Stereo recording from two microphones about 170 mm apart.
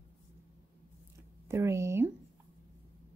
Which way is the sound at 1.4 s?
15° right (ahead or behind).